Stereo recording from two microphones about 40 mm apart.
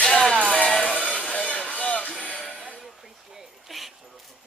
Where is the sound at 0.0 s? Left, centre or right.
Centre.